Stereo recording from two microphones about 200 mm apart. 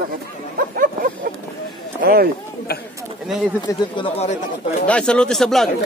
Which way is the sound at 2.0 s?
50° right (ahead or behind).